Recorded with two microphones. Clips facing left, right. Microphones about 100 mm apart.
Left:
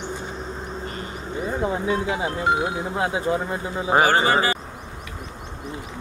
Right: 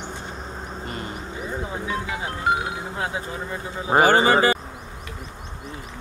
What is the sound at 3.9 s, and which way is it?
Speech, 25° right (ahead or behind).